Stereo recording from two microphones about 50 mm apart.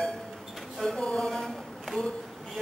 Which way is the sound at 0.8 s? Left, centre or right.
Centre.